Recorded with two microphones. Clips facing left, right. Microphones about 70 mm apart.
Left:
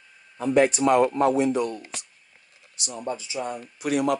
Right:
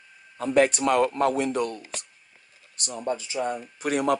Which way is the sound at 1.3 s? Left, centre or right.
Right.